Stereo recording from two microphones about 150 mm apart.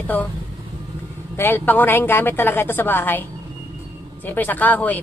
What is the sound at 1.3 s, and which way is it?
A man's voice, 15° left (ahead or behind).